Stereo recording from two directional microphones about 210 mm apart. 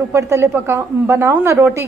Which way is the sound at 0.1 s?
15° right (ahead or behind).